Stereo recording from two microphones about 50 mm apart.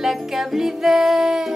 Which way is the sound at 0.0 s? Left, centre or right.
Centre.